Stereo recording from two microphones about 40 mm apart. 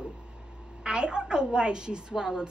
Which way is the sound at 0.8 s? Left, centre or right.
Right.